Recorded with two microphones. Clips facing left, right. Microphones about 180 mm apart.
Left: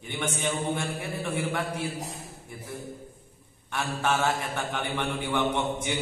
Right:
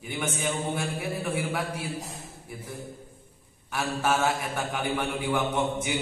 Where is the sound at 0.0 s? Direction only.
5° right (ahead or behind).